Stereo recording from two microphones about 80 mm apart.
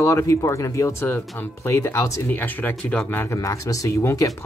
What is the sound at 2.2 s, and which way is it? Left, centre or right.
Speech, left.